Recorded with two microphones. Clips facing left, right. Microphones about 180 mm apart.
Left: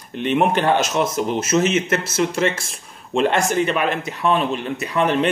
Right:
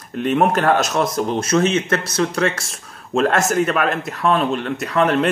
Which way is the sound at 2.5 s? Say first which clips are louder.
Even; centre (ahead or behind).